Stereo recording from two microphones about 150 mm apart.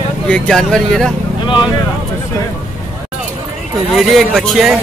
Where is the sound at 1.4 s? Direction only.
35° left (ahead or behind).